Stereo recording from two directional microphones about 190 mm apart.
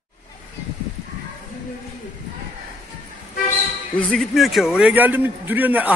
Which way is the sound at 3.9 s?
5° left (ahead or behind).